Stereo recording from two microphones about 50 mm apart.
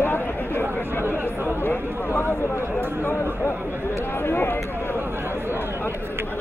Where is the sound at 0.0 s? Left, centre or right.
Left.